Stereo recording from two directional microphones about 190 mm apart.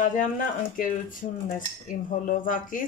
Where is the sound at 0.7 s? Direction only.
45° left (ahead or behind).